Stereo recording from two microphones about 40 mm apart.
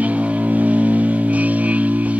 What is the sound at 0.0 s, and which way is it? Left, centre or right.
Music, right.